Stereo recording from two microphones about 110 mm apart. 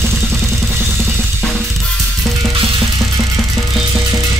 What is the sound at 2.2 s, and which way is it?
Music, centre (ahead or behind).